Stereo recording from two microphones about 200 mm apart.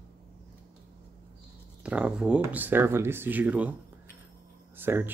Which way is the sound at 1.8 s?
5° right (ahead or behind).